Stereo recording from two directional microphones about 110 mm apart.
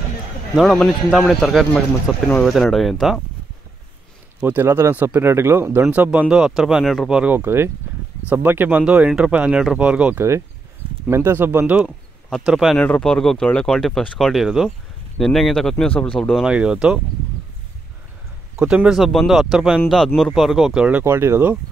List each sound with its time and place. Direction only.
0.6 s speech: 5° left (ahead or behind)
4.4 s speech: 20° right (ahead or behind)
7.3 s speech: 20° right (ahead or behind)
11.1 s speech: 20° right (ahead or behind)
12.4 s speech: 5° right (ahead or behind)
12.7 s speech: 10° left (ahead or behind)
16.4 s speech: 10° right (ahead or behind)
18.6 s speech: 10° right (ahead or behind)
21.0 s speech: 25° right (ahead or behind)